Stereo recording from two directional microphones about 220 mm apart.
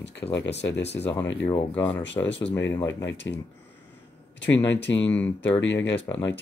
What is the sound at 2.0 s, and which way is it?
Speech, 55° left (ahead or behind).